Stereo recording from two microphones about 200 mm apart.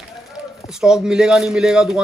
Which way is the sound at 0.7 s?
5° right (ahead or behind).